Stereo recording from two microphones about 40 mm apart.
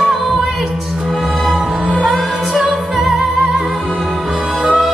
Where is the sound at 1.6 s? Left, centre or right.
Centre.